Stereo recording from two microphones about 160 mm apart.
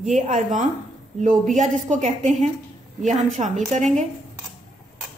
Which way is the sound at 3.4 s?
50° right (ahead or behind).